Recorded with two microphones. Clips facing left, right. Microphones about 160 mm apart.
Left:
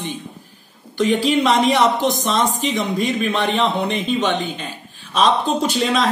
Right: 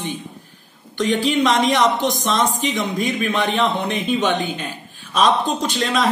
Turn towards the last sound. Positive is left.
turn(degrees=5)  # may be behind; listen again after turning